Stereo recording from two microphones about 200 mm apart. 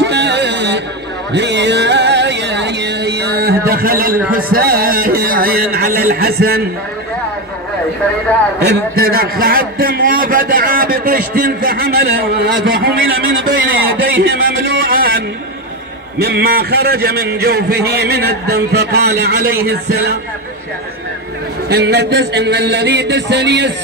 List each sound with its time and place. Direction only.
0.0 s a sound: 60° right (ahead or behind)
4.3 s a man's voice: 45° right (ahead or behind)
8.5 s a man's voice: 50° right (ahead or behind)
21.6 s a man's voice: 55° right (ahead or behind)